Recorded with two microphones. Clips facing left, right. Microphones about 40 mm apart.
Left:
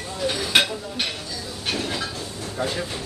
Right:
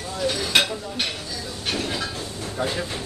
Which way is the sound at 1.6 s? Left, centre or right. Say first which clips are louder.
Even; centre.